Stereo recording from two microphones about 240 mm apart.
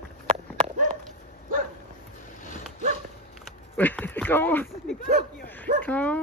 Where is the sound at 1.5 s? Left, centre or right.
Right.